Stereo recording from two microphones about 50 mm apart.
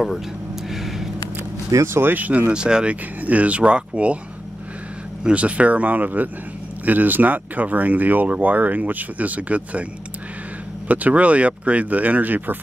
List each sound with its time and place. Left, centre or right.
2.0 s speech: right
2.5 s speech: centre
5.2 s speech: right
10.9 s speech: right